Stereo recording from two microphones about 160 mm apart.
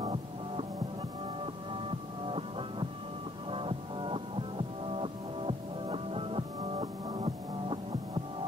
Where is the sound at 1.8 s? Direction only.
35° right (ahead or behind).